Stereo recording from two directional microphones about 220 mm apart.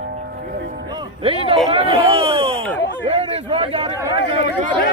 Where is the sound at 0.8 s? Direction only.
20° right (ahead or behind).